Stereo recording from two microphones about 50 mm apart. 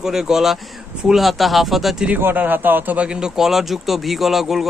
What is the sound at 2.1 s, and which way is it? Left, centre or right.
Speech, right.